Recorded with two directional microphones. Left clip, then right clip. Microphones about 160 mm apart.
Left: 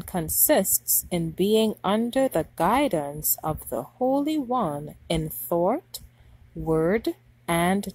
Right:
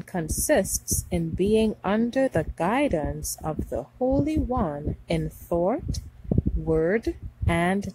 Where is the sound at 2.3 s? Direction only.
30° left (ahead or behind).